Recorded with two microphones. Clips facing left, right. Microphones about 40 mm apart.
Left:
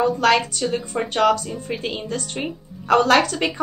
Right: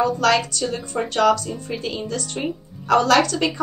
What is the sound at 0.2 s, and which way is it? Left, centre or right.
A woman's voice, left.